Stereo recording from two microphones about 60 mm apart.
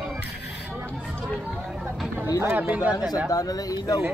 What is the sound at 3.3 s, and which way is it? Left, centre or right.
Speech, left.